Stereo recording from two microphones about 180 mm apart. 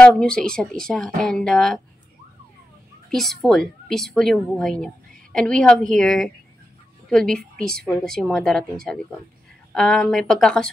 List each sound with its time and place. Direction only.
0.0 s a woman's voice: 5° left (ahead or behind)
3.1 s a woman's voice: centre (ahead or behind)